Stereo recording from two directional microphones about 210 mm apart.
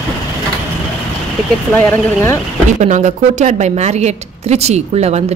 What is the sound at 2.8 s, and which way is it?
A woman's voice, 35° right (ahead or behind).